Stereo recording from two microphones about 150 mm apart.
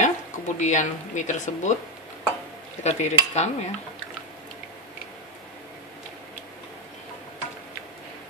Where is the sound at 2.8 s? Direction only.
50° left (ahead or behind).